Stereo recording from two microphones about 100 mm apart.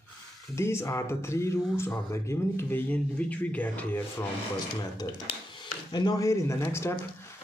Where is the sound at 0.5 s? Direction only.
25° left (ahead or behind).